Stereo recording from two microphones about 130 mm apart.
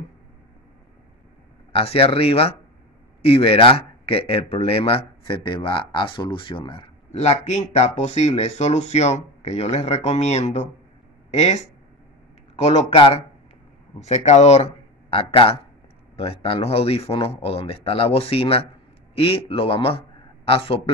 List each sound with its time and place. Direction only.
1.7 s speech: 45° left (ahead or behind)
7.1 s speech: 60° left (ahead or behind)
12.6 s a man's voice: 50° left (ahead or behind)